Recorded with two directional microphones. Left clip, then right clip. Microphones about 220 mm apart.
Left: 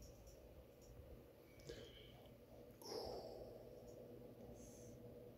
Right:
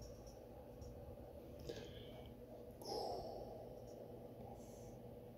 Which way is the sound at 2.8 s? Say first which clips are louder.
Right 5 dB; centre (ahead or behind).